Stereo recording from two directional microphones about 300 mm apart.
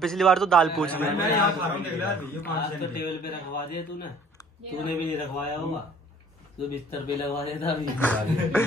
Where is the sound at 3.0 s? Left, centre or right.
Left.